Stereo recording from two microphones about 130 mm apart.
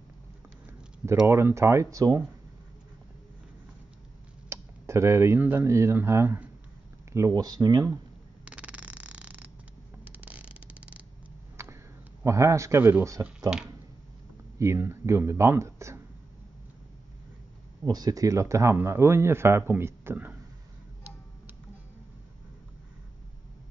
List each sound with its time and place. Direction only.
1.2 s speech: 20° right (ahead or behind)
4.5 s speech: 20° right (ahead or behind)
8.5 s a sound: 10° right (ahead or behind)
11.6 s a sound: 20° right (ahead or behind)
12.2 s speech: 20° right (ahead or behind)
14.6 s speech: 20° right (ahead or behind)
17.8 s speech: 30° right (ahead or behind)